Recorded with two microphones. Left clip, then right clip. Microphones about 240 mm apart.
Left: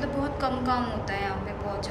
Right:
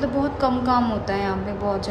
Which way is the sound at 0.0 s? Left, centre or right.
Centre.